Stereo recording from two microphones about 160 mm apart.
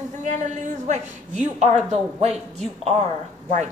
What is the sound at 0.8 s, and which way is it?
A woman's voice, 45° right (ahead or behind).